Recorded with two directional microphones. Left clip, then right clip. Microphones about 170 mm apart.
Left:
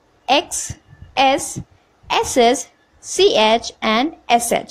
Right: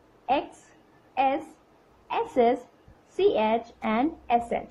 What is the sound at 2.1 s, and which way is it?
A woman's voice, 55° left (ahead or behind).